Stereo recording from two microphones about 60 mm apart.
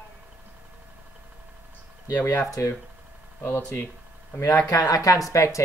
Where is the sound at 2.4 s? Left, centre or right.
Left.